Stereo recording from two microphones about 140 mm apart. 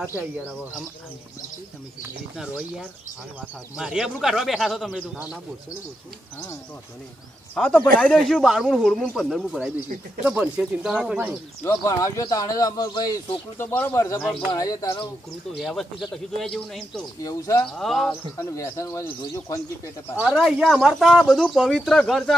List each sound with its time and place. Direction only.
2.3 s speech: 5° right (ahead or behind)
7.5 s speech: 5° left (ahead or behind)
11.6 s speech: 20° left (ahead or behind)
13.6 s speech: 15° left (ahead or behind)
15.5 s speech: centre (ahead or behind)
17.2 s speech: 25° left (ahead or behind)
17.7 s speech: centre (ahead or behind)
18.4 s speech: 20° left (ahead or behind)
20.2 s speech: 5° right (ahead or behind)